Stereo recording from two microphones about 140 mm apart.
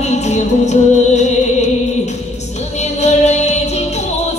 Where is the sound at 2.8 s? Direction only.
55° left (ahead or behind).